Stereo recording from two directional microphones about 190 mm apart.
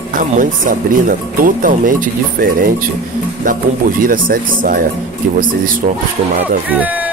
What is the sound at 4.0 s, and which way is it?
Speech, 45° right (ahead or behind).